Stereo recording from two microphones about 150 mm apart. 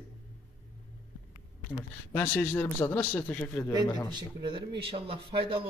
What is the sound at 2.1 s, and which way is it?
Speech, 15° left (ahead or behind).